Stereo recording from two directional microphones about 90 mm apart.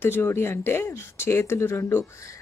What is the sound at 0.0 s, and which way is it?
Speech, 25° left (ahead or behind).